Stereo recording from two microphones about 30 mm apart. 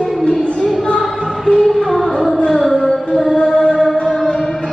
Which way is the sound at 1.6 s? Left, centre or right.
Centre.